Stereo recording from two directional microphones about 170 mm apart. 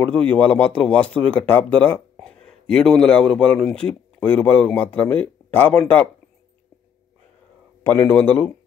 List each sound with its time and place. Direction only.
0.0 s a man's voice: 10° left (ahead or behind)
7.8 s a man's voice: 10° left (ahead or behind)